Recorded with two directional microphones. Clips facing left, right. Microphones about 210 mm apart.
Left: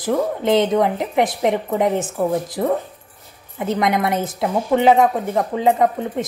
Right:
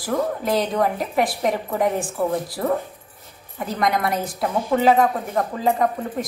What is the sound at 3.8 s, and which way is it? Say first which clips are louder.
A woman's voice: left 1 dB; 25° left (ahead or behind).